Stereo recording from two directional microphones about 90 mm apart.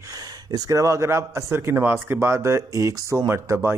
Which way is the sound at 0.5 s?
40° right (ahead or behind).